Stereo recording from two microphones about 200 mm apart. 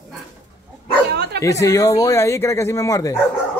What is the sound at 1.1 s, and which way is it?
Bow-wow, 55° right (ahead or behind).